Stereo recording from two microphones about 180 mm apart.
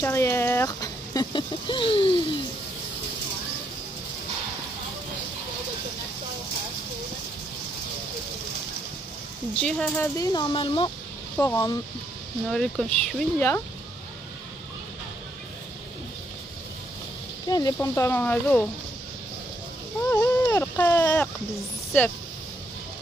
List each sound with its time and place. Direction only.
0.0 s speech: 15° left (ahead or behind)
9.6 s speech: 5° left (ahead or behind)
10.1 s speech: 20° left (ahead or behind)
11.3 s speech: 15° left (ahead or behind)
12.4 s speech: 5° left (ahead or behind)
17.5 s speech: 20° left (ahead or behind)
20.1 s a sound: 15° left (ahead or behind)
21.9 s speech: 5° left (ahead or behind)